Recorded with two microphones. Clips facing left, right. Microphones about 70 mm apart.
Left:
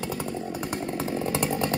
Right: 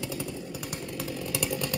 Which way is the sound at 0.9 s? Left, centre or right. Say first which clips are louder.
Left 5 dB; left.